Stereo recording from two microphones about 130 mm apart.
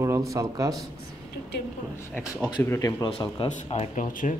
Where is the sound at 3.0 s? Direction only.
40° left (ahead or behind).